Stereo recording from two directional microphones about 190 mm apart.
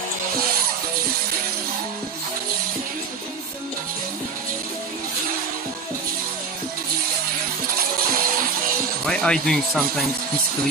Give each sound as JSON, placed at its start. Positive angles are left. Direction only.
{"t": 8.1, "sound": "music", "side_deg": -50}
{"t": 9.0, "sound": "speech", "side_deg": 5}